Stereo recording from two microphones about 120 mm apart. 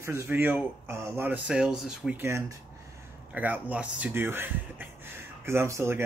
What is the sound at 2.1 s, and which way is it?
Speech, 25° right (ahead or behind).